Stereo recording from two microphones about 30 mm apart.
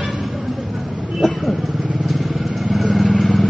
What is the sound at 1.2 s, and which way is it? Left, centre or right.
Vehicle, centre.